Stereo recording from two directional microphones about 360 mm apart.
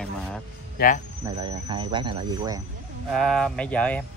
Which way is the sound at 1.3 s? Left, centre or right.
Centre.